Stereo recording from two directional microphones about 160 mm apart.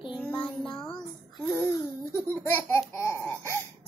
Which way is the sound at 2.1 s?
15° left (ahead or behind).